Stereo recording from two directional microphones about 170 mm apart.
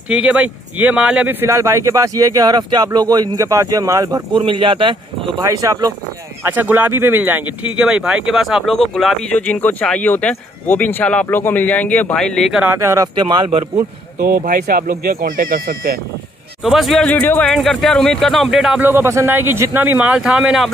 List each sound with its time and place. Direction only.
0.1 s speech: 5° right (ahead or behind); by 4.9 s 30° right (ahead or behind)
5.4 s speech: 20° right (ahead or behind)
14.1 s speech: 55° right (ahead or behind)
16.6 s speech: centre (ahead or behind)